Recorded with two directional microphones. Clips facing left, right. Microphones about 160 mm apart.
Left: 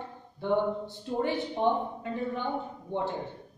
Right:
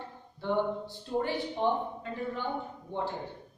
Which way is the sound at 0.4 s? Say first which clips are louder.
Left 2 dB; 20° left (ahead or behind).